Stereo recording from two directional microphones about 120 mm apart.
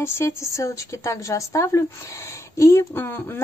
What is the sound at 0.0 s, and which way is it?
A woman's voice, 25° left (ahead or behind).